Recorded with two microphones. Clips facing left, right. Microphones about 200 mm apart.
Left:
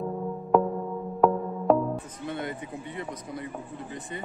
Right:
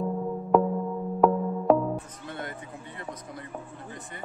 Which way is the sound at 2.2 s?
20° left (ahead or behind).